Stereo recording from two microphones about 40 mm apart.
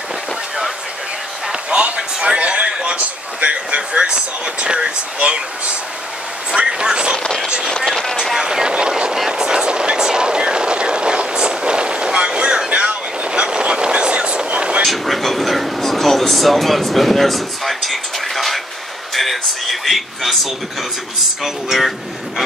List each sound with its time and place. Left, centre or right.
1.5 s a sound: right
2.2 s speech: right
6.5 s speech: right
7.8 s speech: centre
8.4 s speech: centre
12.6 s vehicle: right
13.3 s speech: right
14.8 s speech: centre